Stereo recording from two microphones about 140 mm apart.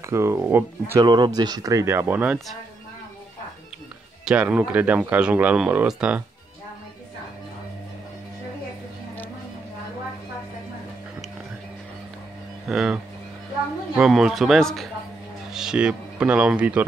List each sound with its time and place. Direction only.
0.0 s speech: 20° right (ahead or behind)
1.0 s speech: 30° right (ahead or behind); by 2.3 s 15° right (ahead or behind)
4.2 s speech: 5° right (ahead or behind)
12.6 s speech: 5° right (ahead or behind)